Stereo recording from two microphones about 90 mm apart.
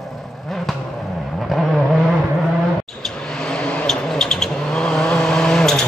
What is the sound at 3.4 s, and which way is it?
Vehicle, 10° left (ahead or behind).